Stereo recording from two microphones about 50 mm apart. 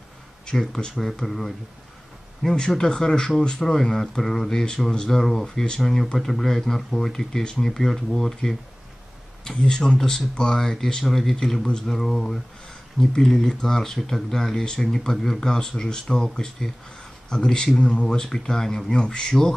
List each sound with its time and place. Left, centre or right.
0.5 s speech: centre
0.9 s speech: centre
2.4 s speech: centre
9.6 s speech: centre
17.7 s speech: left
18.0 s speech: centre